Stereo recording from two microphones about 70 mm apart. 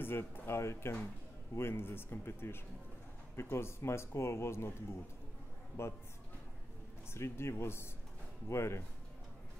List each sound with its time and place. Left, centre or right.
0.0 s speech: left
5.8 s speech: left
7.1 s speech: left